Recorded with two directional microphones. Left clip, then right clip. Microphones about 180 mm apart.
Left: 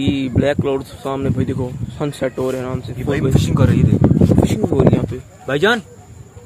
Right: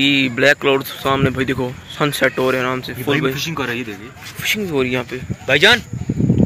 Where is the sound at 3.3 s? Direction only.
90° left.